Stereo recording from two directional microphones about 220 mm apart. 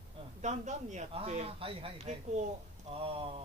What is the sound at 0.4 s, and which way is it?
Speech, 35° right (ahead or behind).